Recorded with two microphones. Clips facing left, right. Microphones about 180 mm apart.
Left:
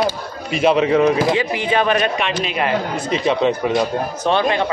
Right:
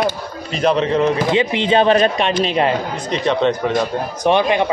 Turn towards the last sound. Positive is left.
turn(degrees=-15)  # may be behind; listen again after turning